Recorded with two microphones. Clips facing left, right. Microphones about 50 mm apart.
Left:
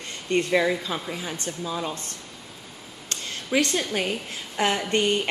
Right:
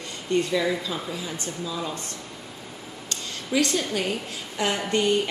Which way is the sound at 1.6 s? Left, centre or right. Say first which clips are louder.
Left 2 dB; left.